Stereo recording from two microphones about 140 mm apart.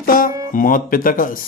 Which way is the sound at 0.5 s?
80° left.